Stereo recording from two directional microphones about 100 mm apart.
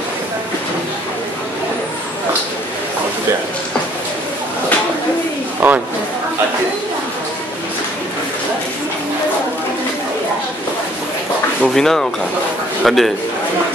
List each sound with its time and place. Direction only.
5.6 s a man's voice: 20° right (ahead or behind)
11.6 s speech: 5° left (ahead or behind)